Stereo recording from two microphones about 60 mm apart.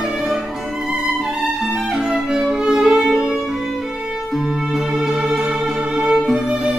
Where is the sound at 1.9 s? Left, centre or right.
Centre.